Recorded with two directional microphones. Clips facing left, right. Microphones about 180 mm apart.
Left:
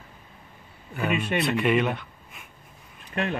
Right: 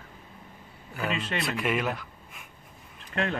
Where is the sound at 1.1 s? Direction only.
10° left (ahead or behind).